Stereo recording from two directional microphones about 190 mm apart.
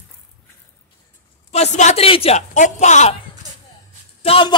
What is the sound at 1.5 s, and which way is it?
Speech, 35° left (ahead or behind).